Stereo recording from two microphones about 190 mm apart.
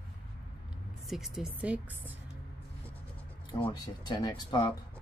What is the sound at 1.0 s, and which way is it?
Speech, centre (ahead or behind).